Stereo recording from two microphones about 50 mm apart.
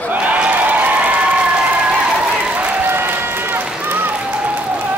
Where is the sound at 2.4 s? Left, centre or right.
Right.